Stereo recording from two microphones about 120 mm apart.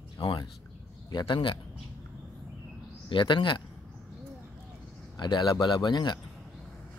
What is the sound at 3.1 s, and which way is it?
Speech, 40° left (ahead or behind).